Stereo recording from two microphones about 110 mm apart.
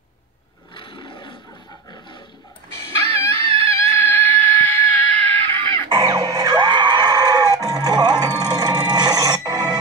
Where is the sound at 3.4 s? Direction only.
55° right (ahead or behind).